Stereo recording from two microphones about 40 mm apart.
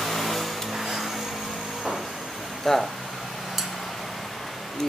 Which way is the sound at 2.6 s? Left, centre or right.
Centre.